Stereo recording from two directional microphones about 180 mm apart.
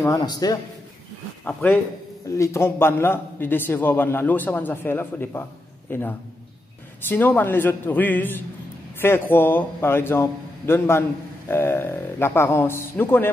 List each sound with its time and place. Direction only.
0.2 s a man's voice: 20° left (ahead or behind)
1.4 s a man's voice: 10° left (ahead or behind)